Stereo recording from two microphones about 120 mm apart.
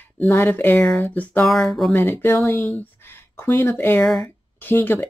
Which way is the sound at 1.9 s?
20° left (ahead or behind).